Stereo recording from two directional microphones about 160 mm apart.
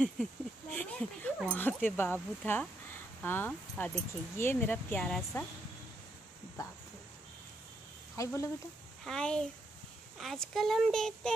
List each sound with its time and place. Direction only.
0.0 s speech: 5° left (ahead or behind)
8.2 s speech: 20° left (ahead or behind)
9.0 s speech: 5° left (ahead or behind)